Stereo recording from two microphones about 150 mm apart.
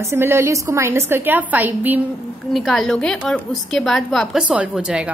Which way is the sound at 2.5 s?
Centre (ahead or behind).